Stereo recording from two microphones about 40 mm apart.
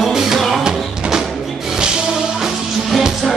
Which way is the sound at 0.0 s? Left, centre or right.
Centre.